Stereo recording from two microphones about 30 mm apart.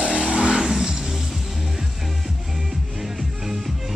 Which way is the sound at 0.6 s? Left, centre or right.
Centre.